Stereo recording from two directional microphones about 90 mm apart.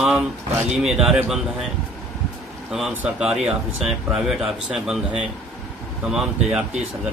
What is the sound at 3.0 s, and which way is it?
A man's voice, 10° right (ahead or behind).